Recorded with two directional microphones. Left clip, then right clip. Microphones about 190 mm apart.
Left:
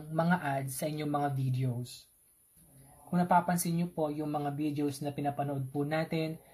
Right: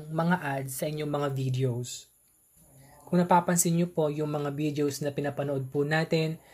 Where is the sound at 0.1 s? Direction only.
45° right (ahead or behind).